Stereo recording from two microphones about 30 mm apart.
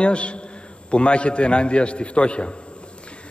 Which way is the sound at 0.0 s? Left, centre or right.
Left.